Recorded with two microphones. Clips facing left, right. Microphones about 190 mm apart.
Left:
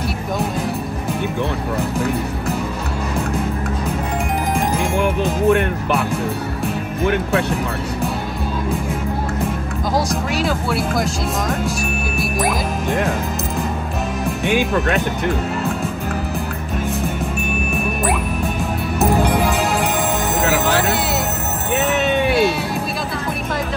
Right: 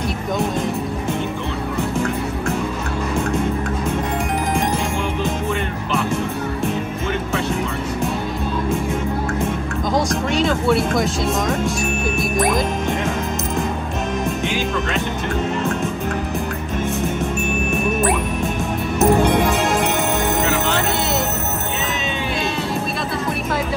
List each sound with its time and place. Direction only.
5.0 s music: 60° left (ahead or behind)
9.9 s music: 5° left (ahead or behind)
14.4 s music: 55° left (ahead or behind)
19.0 s music: centre (ahead or behind)